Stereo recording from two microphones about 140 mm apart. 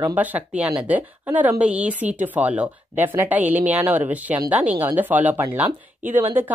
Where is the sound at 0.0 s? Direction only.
15° right (ahead or behind).